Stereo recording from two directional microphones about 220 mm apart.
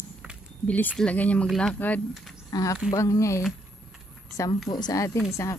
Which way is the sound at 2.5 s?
15° left (ahead or behind).